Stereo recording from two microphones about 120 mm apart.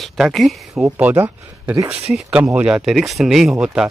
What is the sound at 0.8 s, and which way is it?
Speech, 15° right (ahead or behind).